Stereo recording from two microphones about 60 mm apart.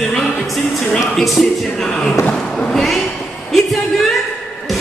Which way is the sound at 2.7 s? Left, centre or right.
Centre.